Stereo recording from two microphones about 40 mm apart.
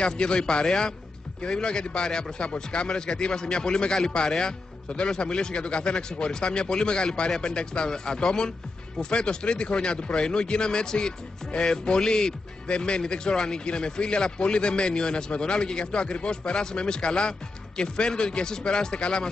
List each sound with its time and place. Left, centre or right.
0.0 s a man's voice: left